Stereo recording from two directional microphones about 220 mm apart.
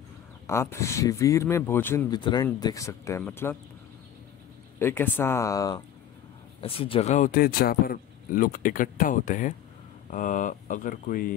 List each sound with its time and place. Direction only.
0.5 s speech: 10° left (ahead or behind)
4.7 s speech: 10° left (ahead or behind)
6.6 s speech: 25° left (ahead or behind)